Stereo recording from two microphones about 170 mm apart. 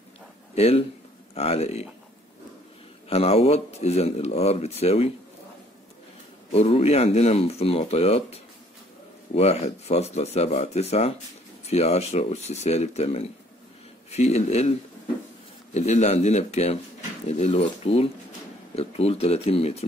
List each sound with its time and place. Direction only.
0.6 s speech: 35° left (ahead or behind)
3.1 s speech: 35° left (ahead or behind)
6.5 s speech: 35° left (ahead or behind)
15.7 s speech: 40° left (ahead or behind)